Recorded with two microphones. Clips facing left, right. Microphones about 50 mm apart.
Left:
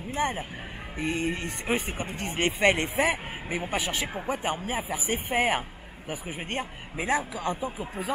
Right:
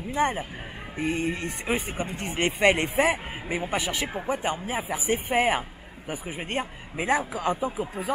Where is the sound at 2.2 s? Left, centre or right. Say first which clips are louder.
Right 1 dB; centre.